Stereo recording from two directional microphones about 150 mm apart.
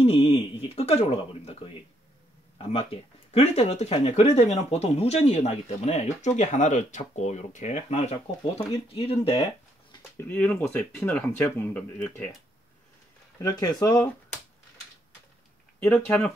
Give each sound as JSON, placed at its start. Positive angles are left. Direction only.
{"t": 0.0, "sound": "speech", "side_deg": 40}
{"t": 2.7, "sound": "speech", "side_deg": 40}
{"t": 10.1, "sound": "speech", "side_deg": 10}
{"t": 13.4, "sound": "speech", "side_deg": 25}